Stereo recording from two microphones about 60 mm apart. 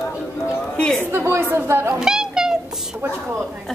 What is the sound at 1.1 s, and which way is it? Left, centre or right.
Speech, right.